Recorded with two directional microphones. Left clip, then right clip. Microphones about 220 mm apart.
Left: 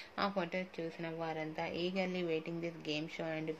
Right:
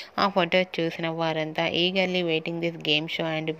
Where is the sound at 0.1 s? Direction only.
35° right (ahead or behind).